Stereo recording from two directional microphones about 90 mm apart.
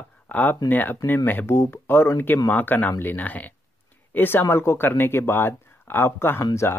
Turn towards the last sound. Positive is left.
turn(degrees=30)  # may be behind; listen again after turning